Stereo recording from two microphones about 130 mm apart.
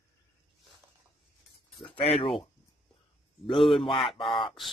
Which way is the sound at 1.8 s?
45° left (ahead or behind).